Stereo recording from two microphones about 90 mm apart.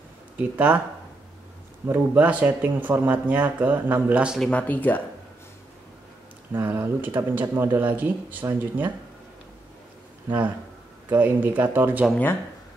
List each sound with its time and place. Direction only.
0.4 s speech: 15° right (ahead or behind)
1.9 s speech: 20° right (ahead or behind)
4.4 s speech: 15° left (ahead or behind)
6.5 s speech: 20° right (ahead or behind)
11.1 s speech: 20° right (ahead or behind)